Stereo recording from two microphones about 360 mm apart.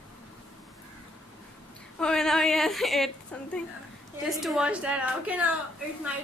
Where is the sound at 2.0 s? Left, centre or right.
Centre.